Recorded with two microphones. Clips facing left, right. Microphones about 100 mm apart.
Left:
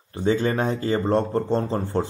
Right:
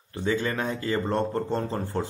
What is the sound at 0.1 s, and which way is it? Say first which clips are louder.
A man's voice: left 5 dB; 30° left (ahead or behind).